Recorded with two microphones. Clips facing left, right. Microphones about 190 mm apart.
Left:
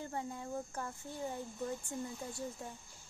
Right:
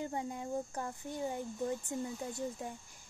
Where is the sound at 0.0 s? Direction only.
15° right (ahead or behind).